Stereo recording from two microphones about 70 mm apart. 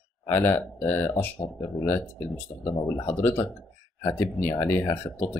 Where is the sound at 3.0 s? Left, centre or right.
Left.